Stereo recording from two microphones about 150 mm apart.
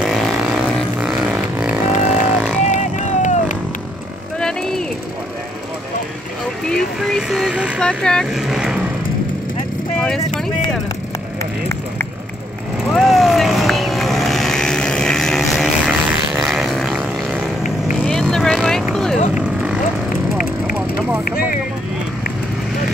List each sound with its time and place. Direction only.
0.0 s vehicle: centre (ahead or behind)
2.6 s vehicle: 55° left (ahead or behind)
4.4 s a sound: 5° left (ahead or behind)
6.7 s a sound: centre (ahead or behind)
7.8 s vehicle: 5° left (ahead or behind)
9.9 s vehicle: 5° left (ahead or behind)
12.9 s vehicle: centre (ahead or behind)
16.3 s a sound: centre (ahead or behind)
18.0 s vehicle: 5° left (ahead or behind)